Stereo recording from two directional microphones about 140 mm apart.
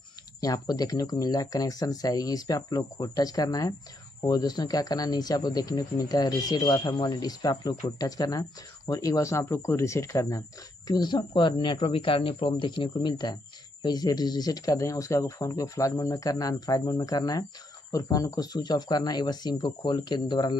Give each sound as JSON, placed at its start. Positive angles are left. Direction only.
{"t": 0.4, "sound": "speech", "side_deg": 25}